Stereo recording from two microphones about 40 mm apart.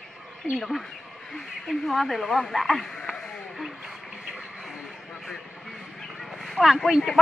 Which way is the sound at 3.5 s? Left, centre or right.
Centre.